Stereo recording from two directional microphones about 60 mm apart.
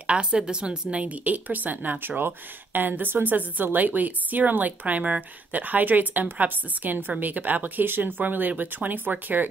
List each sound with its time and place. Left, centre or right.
0.0 s a woman's voice: centre